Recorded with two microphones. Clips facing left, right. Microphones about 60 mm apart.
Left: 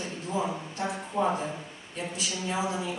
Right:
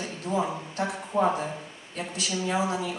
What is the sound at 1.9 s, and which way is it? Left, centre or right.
Speech, right.